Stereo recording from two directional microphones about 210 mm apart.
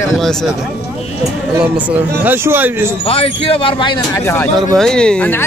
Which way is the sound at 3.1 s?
25° left (ahead or behind).